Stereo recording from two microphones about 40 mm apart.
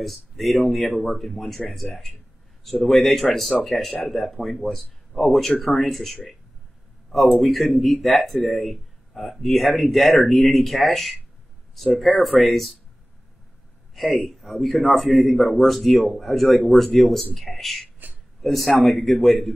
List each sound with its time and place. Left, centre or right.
0.0 s speech: centre
14.2 s speech: centre